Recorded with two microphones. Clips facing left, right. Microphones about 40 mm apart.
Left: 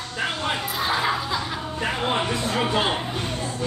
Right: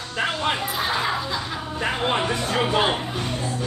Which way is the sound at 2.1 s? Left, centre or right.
Centre.